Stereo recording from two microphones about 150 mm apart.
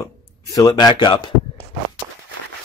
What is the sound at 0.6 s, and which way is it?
Speech, 25° left (ahead or behind).